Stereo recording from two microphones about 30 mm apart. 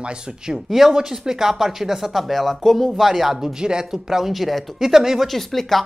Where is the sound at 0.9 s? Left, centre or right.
Centre.